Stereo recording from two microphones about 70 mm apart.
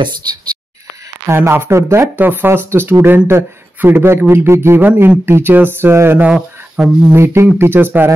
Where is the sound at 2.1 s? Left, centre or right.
Right.